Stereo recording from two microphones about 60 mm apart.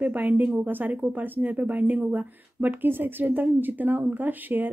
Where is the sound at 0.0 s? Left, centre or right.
Right.